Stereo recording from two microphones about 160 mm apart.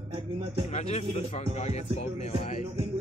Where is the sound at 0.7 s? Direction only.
45° left (ahead or behind).